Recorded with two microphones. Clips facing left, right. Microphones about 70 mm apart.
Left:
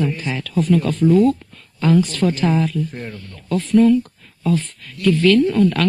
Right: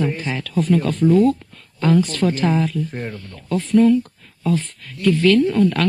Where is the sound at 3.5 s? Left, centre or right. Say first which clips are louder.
Left 1 dB; centre.